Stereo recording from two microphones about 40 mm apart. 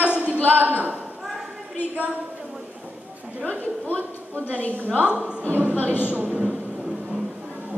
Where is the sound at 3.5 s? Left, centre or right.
Left.